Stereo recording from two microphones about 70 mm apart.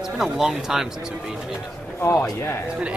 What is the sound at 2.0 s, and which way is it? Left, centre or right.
Speech, left.